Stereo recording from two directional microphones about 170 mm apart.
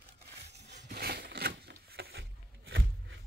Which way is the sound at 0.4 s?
85° right.